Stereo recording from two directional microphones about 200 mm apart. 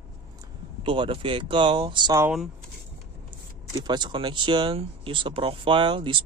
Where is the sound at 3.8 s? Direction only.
20° right (ahead or behind).